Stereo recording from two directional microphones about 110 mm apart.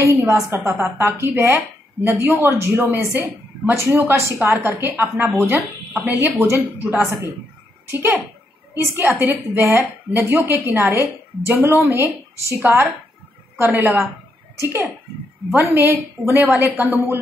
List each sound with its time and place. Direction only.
0.0 s a woman's voice: 25° right (ahead or behind)